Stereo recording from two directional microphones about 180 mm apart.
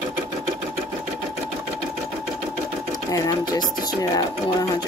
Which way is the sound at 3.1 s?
20° left (ahead or behind).